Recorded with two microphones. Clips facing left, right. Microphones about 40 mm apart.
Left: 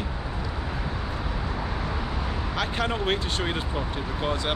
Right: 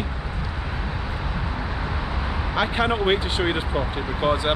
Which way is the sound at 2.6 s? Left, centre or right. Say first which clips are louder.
Right 6 dB; centre.